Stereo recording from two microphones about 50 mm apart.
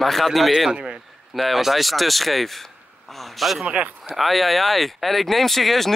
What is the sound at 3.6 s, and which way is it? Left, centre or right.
Speech, right.